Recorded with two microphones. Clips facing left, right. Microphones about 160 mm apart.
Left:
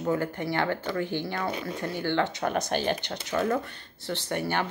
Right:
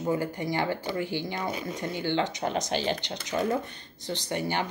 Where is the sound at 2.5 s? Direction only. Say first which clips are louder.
Left 1 dB; 55° left (ahead or behind).